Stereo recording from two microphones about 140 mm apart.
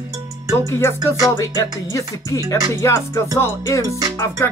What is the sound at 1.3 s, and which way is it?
Music, 20° left (ahead or behind).